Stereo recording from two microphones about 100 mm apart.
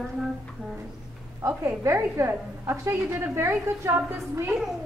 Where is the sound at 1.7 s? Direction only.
25° right (ahead or behind).